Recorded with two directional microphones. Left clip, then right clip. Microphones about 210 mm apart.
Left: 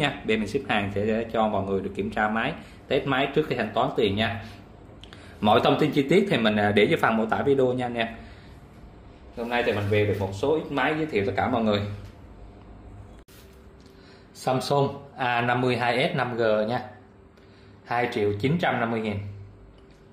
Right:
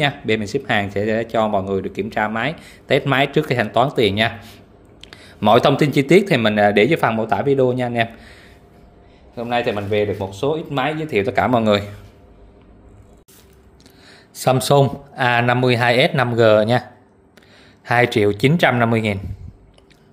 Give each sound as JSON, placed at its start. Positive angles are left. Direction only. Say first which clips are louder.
{"t": 0.0, "sound": "speech", "louder": "right 6 dB", "side_deg": -30}
{"t": 9.4, "sound": "speech", "louder": "right 5 dB", "side_deg": -55}
{"t": 14.4, "sound": "speech", "louder": "right 9 dB", "side_deg": -50}
{"t": 17.8, "sound": "speech", "louder": "right 9 dB", "side_deg": -50}